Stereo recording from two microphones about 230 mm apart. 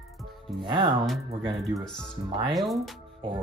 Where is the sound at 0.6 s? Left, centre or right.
Right.